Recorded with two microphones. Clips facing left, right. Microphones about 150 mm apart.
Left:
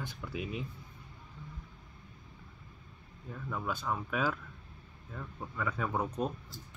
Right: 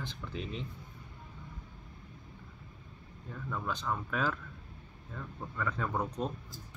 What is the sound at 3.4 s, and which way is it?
Speech, 10° left (ahead or behind).